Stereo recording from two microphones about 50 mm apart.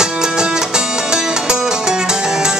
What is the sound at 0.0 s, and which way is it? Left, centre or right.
Music, centre.